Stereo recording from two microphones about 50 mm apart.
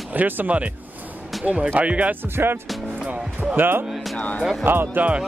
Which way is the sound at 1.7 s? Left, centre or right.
Right.